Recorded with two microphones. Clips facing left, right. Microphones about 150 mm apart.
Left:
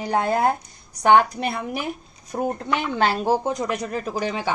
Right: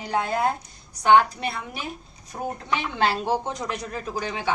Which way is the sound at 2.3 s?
55° left (ahead or behind).